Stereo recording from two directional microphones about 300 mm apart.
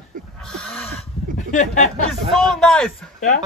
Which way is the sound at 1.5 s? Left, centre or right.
Left.